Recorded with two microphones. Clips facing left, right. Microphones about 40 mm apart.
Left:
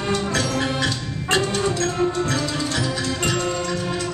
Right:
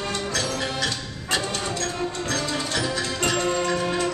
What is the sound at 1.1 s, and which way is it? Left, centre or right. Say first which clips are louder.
Music: left 5 dB; left.